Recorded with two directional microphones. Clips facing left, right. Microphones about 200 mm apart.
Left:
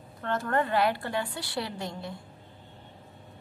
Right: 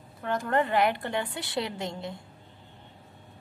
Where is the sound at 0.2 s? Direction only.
15° right (ahead or behind).